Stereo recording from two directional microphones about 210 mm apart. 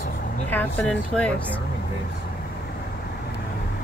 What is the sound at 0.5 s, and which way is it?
Speech, 10° left (ahead or behind).